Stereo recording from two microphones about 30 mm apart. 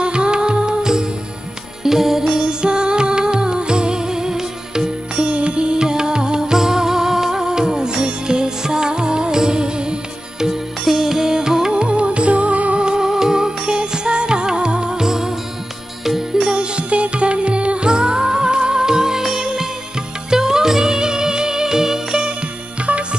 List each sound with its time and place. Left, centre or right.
0.0 s music: right; by 2.2 s centre
2.3 s music: right
5.1 s music: right
10.4 s music: centre
11.7 s music: right
12.7 s music: right
16.0 s music: centre
16.5 s music: right; by 22.3 s centre